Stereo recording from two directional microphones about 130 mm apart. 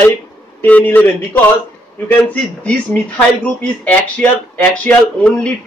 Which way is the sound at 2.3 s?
10° left (ahead or behind).